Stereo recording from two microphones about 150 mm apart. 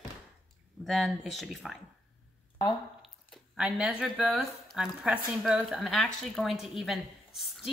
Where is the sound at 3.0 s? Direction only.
Centre (ahead or behind).